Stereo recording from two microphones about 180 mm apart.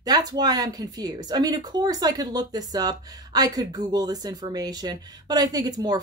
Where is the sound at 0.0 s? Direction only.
20° right (ahead or behind).